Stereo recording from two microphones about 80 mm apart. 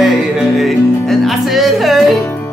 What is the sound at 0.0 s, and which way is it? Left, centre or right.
Music, centre.